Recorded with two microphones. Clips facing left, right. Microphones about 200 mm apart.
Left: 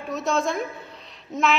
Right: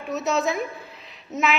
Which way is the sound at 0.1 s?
5° right (ahead or behind).